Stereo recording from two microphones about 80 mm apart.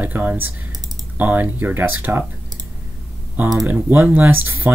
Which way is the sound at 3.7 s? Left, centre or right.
Right.